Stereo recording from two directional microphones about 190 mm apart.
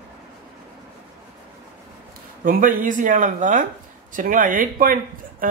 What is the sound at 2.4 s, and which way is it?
Speech, 45° right (ahead or behind).